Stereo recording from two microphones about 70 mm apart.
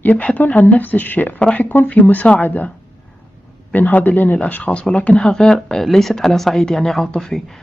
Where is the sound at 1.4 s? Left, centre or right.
Centre.